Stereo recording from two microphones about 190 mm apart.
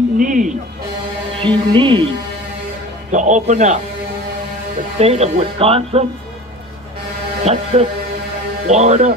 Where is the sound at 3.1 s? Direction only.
40° right (ahead or behind).